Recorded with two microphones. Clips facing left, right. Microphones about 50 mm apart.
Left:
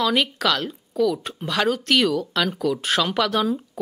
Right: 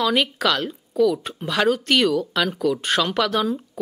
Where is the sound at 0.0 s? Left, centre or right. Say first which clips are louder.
Right 1 dB; centre.